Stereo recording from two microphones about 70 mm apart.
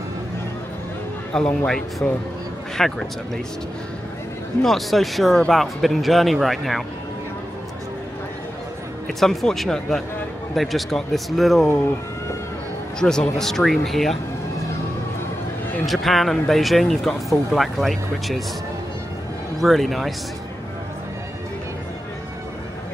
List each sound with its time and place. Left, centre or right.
2.0 s speech: centre
2.8 s speech: centre
4.6 s speech: centre
9.0 s speech: centre
13.0 s speech: centre
15.8 s speech: centre
19.6 s speech: centre